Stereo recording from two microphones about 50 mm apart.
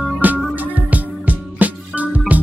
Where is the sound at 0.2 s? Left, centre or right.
Right.